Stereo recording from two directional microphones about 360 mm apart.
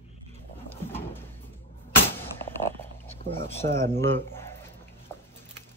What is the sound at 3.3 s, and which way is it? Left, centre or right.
Speech, centre.